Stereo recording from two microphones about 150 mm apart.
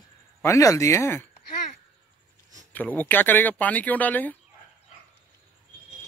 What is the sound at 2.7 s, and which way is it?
Speech, 10° left (ahead or behind).